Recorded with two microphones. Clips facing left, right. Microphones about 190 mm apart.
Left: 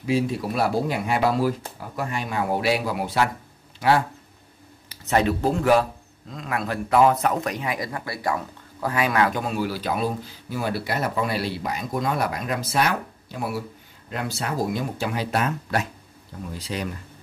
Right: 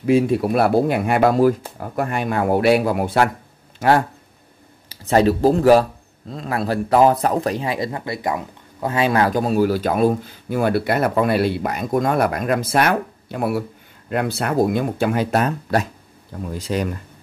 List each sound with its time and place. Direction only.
0.0 s speech: 55° right (ahead or behind)
4.8 s speech: 35° right (ahead or behind)